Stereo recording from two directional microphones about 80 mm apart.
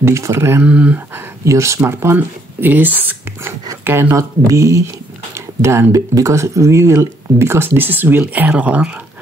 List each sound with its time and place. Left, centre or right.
0.0 s speech: right
0.7 s speech: centre
1.1 s speech: right; by 8.9 s centre